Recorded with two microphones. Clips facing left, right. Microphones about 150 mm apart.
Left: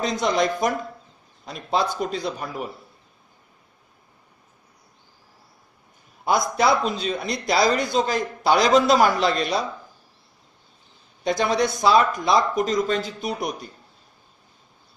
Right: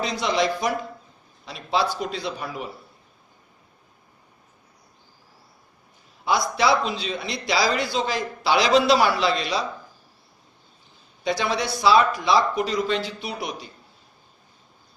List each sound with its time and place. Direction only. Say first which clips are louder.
0.0 s speech: left 1 dB; 45° left (ahead or behind)
6.2 s speech: left 1 dB; 50° left (ahead or behind)
11.2 s speech: left 3 dB; 45° left (ahead or behind)